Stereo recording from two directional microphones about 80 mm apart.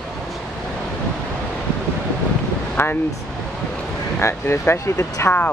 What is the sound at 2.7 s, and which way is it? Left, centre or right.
Speech, left.